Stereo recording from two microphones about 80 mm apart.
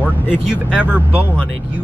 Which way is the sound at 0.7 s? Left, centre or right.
Centre.